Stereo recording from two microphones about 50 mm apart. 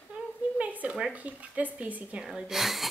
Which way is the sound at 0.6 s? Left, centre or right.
Right.